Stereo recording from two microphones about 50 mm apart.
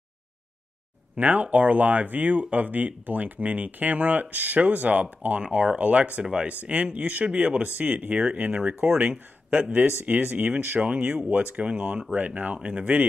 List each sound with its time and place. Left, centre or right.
1.1 s speech: right